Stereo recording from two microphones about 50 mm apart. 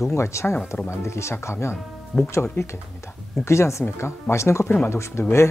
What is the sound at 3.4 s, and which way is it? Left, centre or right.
Speech, left.